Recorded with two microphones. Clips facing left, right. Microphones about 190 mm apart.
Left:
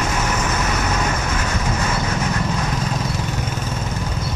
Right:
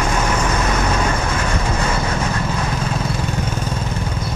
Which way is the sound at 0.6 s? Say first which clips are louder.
Right 3 dB; 30° right (ahead or behind).